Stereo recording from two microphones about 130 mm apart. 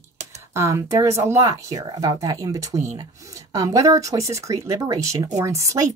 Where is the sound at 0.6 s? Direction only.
20° right (ahead or behind).